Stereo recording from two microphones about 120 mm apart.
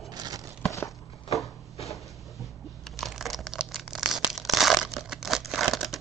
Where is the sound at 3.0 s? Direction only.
Centre (ahead or behind).